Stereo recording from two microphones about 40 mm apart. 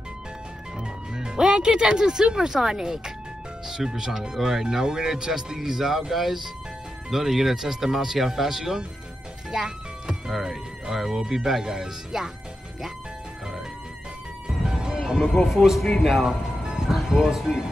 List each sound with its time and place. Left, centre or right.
0.7 s speech: centre
9.5 s music: centre
10.3 s speech: centre
14.7 s music: centre
15.3 s a man's voice: centre
16.3 s music: centre
17.2 s speech: centre